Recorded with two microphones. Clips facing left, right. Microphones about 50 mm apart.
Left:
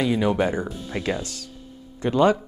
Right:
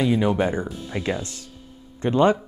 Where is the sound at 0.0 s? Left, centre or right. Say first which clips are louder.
Right 1 dB; centre.